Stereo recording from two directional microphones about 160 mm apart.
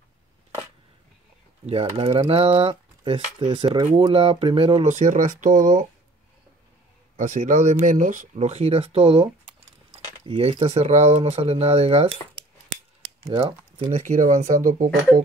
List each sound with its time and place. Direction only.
1.7 s speech: 35° right (ahead or behind)
4.8 s speech: 50° right (ahead or behind)
7.2 s speech: 50° right (ahead or behind)
14.0 s speech: 55° right (ahead or behind)